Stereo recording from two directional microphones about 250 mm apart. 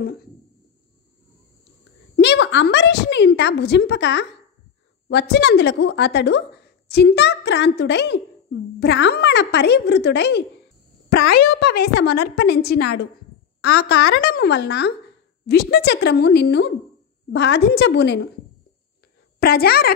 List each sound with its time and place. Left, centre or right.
2.1 s a child's voice: left
5.3 s a child's voice: left
11.9 s a child's voice: left
19.4 s speech: left